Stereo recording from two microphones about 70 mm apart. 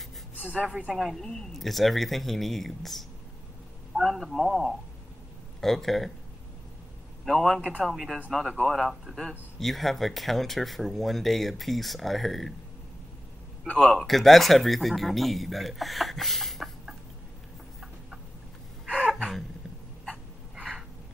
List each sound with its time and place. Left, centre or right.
0.4 s speech: centre
0.9 s speech: centre
7.2 s speech: centre
13.9 s speech: centre
18.9 s a sound: centre
19.1 s a sound: centre